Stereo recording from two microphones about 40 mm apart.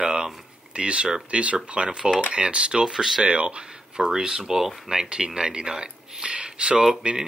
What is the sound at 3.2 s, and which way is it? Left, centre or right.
Speech, right.